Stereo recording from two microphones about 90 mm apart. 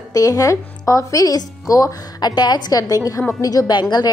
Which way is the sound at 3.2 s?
25° left (ahead or behind).